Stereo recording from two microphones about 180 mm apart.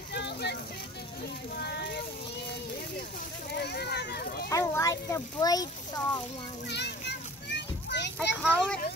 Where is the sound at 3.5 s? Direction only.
65° left (ahead or behind).